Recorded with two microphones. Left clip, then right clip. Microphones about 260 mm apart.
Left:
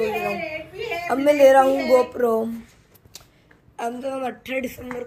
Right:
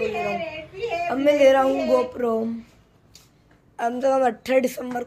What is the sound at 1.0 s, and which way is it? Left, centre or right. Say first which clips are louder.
A woman's voice: left 2 dB; centre.